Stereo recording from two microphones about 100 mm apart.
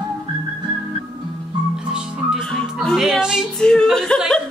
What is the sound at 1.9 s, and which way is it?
Music, 5° right (ahead or behind).